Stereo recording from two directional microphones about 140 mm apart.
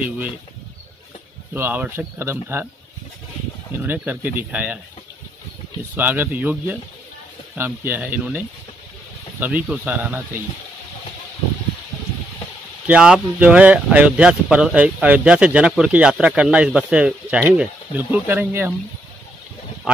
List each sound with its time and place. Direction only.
1.5 s speech: 15° right (ahead or behind)
3.8 s speech: 15° right (ahead or behind)
5.9 s speech: 15° right (ahead or behind)
9.7 s speech: 10° right (ahead or behind)
12.8 s speech: 10° right (ahead or behind)